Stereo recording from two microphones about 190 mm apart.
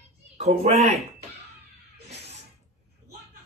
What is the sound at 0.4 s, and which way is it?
Speech, 35° right (ahead or behind).